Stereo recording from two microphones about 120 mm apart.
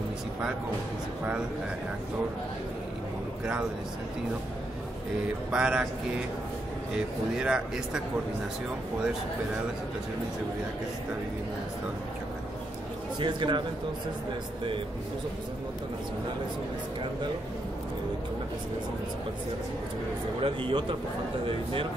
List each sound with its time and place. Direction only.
5.5 s speech: 10° right (ahead or behind)
7.3 s speech: 5° right (ahead or behind)
13.2 s a man's voice: 40° right (ahead or behind)
20.4 s a man's voice: 45° right (ahead or behind)